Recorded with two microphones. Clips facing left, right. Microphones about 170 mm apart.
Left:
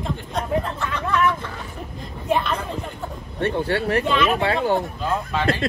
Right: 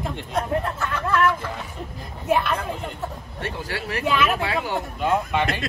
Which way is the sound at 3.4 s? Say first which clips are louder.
Left 9 dB; 60° left (ahead or behind).